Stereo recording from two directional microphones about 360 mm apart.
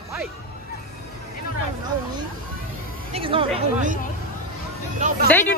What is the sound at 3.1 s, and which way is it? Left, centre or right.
Speech, centre.